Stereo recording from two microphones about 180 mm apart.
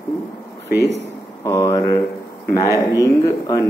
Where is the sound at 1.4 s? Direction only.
15° left (ahead or behind).